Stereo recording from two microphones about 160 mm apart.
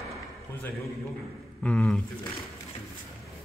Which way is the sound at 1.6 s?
5° left (ahead or behind).